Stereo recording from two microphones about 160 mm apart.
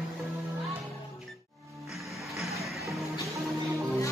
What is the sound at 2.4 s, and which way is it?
Music, centre (ahead or behind).